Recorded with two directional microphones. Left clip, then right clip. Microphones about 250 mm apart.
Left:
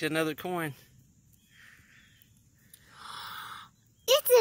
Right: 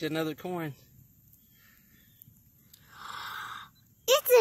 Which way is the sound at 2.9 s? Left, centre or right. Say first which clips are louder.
Right 2 dB; centre.